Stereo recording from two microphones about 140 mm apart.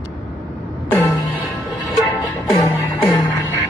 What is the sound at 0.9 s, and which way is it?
Music, 20° left (ahead or behind).